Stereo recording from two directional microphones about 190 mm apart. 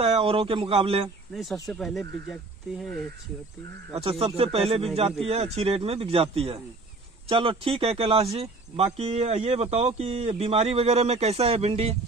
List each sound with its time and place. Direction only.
0.0 s a man's voice: 30° right (ahead or behind)
1.3 s speech: centre (ahead or behind)
3.9 s speech: 30° right (ahead or behind)